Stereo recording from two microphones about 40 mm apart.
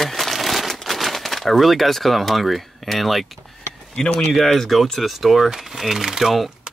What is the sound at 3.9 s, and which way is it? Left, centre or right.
Speech, left.